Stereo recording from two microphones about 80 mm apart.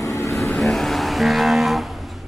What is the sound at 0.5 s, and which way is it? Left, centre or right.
Vehicle, centre.